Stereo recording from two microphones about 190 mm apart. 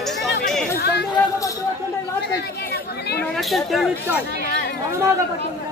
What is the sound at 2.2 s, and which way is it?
Chatter, 60° left (ahead or behind).